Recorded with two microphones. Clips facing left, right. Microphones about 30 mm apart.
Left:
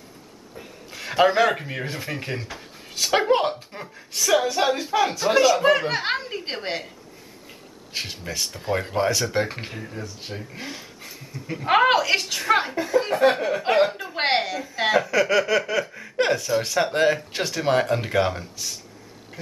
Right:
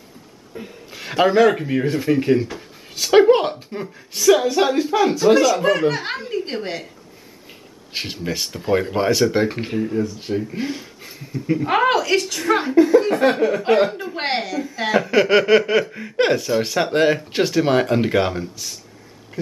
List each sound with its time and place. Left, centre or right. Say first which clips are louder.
0.5 s a sound: right 7 dB; right
0.9 s a woman's voice: right 3 dB; centre
7.9 s speech: right 5 dB; centre
11.6 s a woman's voice: left 1 dB; centre
12.7 s speech: right 8 dB; centre
15.0 s speech: right 5 dB; right; by 19.5 s centre